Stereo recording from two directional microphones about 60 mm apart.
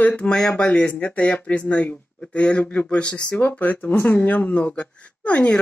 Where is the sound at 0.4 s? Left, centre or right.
Centre.